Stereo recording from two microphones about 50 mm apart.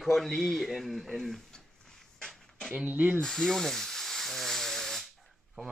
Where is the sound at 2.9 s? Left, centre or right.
Right.